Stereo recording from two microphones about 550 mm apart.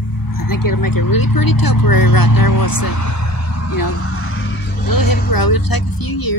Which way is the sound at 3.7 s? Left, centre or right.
Left.